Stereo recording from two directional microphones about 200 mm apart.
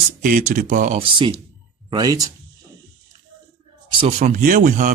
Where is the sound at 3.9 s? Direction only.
30° right (ahead or behind).